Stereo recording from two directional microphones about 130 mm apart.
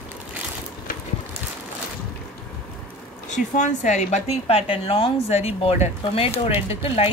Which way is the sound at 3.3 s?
70° left (ahead or behind).